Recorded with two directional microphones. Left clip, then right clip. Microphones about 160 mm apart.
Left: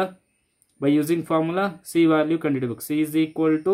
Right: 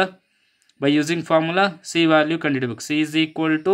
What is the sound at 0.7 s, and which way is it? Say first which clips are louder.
Speech: right 1 dB; 20° right (ahead or behind).